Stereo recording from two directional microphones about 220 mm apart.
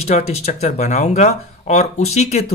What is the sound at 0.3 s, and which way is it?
Speech, 30° left (ahead or behind).